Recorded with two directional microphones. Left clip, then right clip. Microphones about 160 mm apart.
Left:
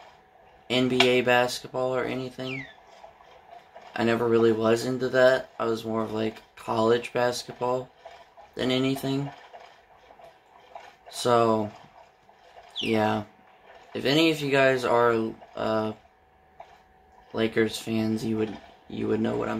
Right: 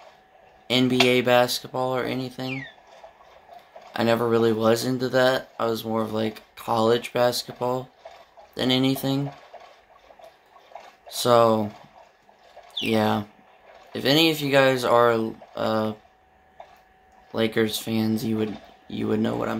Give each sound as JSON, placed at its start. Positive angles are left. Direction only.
{"t": 0.7, "sound": "speech", "side_deg": -30}
{"t": 3.9, "sound": "speech", "side_deg": -30}
{"t": 11.1, "sound": "speech", "side_deg": -30}
{"t": 12.9, "sound": "speech", "side_deg": -30}
{"t": 17.3, "sound": "speech", "side_deg": -35}